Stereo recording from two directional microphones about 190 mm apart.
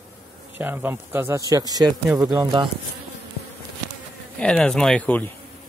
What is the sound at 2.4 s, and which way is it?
Speech, 25° right (ahead or behind).